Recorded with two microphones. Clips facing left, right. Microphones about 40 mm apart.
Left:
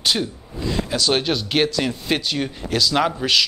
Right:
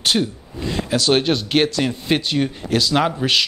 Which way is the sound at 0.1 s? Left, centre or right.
Right.